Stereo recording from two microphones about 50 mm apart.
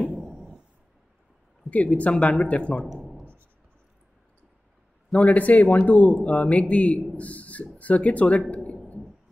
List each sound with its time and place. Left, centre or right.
0.3 s a sound: centre
1.7 s speech: left
5.1 s a man's voice: left